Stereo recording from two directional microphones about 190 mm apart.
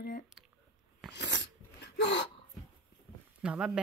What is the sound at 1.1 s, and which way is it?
Sneeze, 65° left (ahead or behind).